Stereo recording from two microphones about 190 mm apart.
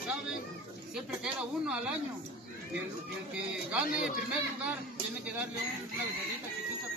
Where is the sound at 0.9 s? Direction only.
5° right (ahead or behind).